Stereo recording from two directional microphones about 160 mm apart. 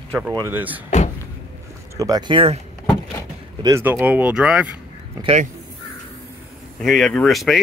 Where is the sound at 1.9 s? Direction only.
20° right (ahead or behind).